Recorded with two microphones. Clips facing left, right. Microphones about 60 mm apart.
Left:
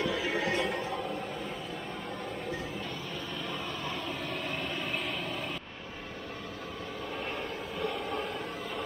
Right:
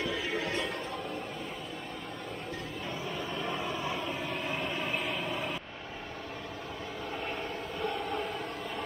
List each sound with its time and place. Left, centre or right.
0.0 s music: centre
3.4 s vehicle: centre
7.8 s vehicle: centre